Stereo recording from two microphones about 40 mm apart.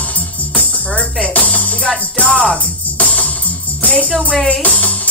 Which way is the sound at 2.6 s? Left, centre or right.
Left.